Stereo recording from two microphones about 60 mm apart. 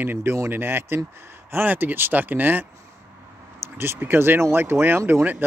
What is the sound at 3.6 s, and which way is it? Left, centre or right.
Speech, right.